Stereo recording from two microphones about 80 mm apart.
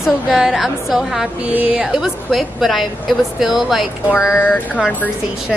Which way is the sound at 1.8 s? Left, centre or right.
Centre.